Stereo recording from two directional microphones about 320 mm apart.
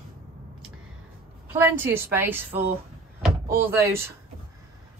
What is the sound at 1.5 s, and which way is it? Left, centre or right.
Speech, centre.